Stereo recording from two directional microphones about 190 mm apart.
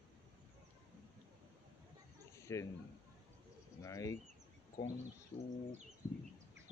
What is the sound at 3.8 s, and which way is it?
Speech, 15° left (ahead or behind).